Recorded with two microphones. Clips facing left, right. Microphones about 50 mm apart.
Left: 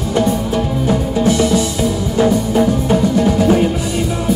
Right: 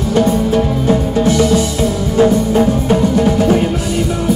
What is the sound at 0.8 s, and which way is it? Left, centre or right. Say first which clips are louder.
Music: left 1 dB; right.